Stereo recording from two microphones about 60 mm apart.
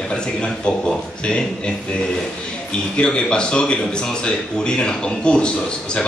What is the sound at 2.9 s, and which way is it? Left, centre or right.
Speech, centre.